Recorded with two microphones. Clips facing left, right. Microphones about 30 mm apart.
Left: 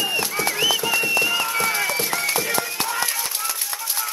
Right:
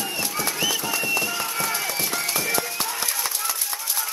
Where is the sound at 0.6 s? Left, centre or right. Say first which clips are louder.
Left 5 dB; left.